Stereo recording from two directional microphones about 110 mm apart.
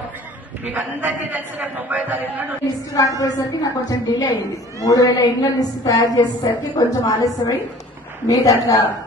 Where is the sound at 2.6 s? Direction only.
30° left (ahead or behind).